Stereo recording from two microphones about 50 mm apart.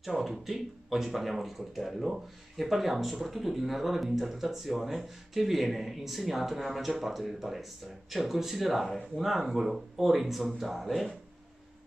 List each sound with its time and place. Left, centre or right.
0.0 s speech: centre